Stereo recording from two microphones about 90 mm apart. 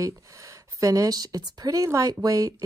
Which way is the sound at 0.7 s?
40° right (ahead or behind).